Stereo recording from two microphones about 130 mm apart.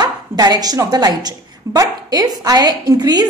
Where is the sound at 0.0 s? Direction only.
30° right (ahead or behind).